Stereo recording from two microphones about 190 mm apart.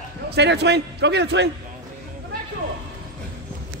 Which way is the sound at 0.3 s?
65° right (ahead or behind).